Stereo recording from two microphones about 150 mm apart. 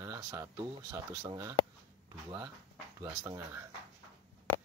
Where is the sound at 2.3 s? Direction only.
10° right (ahead or behind).